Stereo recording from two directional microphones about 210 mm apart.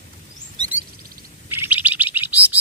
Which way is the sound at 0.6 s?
20° right (ahead or behind).